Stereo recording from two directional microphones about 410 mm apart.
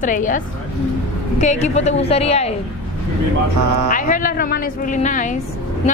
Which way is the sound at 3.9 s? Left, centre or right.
Centre.